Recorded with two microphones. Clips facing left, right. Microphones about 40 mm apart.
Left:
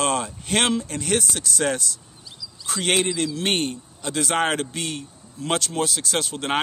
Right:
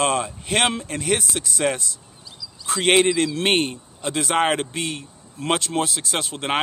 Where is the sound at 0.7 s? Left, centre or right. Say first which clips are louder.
Even; right.